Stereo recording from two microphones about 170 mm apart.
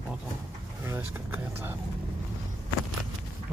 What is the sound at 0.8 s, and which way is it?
Speech, 10° right (ahead or behind).